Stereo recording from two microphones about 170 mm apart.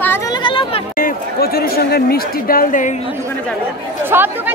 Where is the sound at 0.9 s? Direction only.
60° left (ahead or behind).